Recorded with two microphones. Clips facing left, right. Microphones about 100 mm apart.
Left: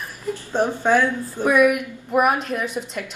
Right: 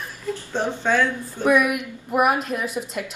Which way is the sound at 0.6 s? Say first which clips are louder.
Left 3 dB; 15° left (ahead or behind).